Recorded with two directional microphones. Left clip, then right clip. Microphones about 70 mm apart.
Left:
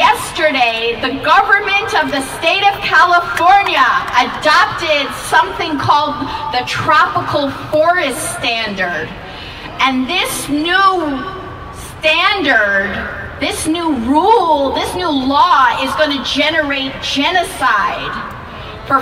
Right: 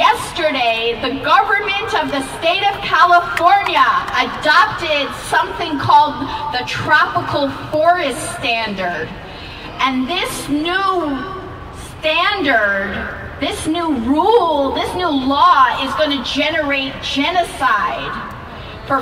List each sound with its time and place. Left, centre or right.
0.0 s a sound: left
3.4 s a woman's voice: left
12.0 s a woman's voice: left